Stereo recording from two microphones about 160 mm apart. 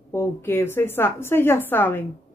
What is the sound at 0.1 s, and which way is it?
A woman's voice, 15° left (ahead or behind).